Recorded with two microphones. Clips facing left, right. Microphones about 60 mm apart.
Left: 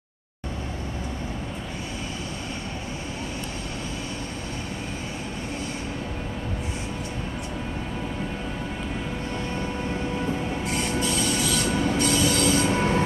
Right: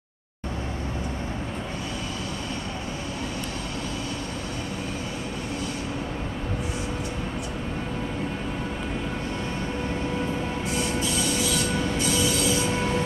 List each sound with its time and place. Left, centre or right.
10.7 s train: left
11.7 s train: centre
12.0 s train: left
12.7 s train: left